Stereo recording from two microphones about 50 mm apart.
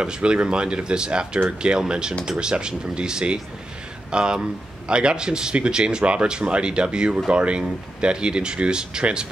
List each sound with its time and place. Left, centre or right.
0.0 s speech: centre